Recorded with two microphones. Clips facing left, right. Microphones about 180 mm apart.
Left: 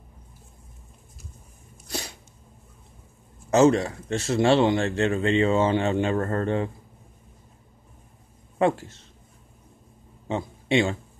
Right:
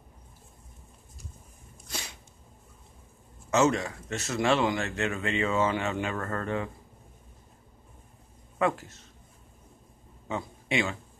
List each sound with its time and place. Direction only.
1.9 s a sound: 40° left (ahead or behind)
3.4 s speech: 35° left (ahead or behind)
8.5 s speech: 30° left (ahead or behind)
10.2 s a man's voice: 30° left (ahead or behind)